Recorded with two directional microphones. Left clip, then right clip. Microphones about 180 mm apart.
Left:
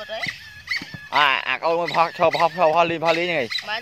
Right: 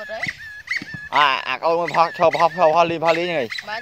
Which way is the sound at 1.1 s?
Centre (ahead or behind).